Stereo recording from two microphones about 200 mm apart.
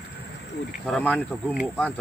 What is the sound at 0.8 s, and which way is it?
Speech, 5° left (ahead or behind).